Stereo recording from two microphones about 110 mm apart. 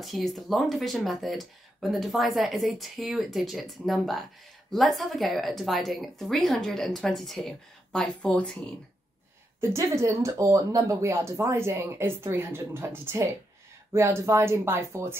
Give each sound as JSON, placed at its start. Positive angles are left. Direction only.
{"t": 0.0, "sound": "a woman's voice", "side_deg": 0}
{"t": 9.6, "sound": "speech", "side_deg": -25}